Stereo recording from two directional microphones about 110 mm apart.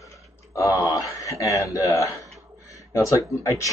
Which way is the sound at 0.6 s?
30° left (ahead or behind).